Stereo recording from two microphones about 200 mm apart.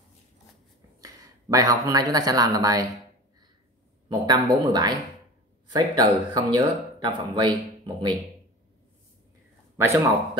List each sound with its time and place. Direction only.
1.0 s speech: 15° right (ahead or behind)
4.1 s speech: 20° right (ahead or behind)
9.8 s a man's voice: 15° right (ahead or behind)